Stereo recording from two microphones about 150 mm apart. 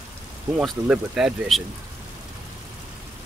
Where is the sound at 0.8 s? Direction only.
10° right (ahead or behind).